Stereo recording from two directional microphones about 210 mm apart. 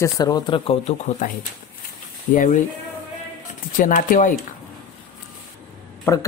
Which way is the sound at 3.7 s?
40° left (ahead or behind).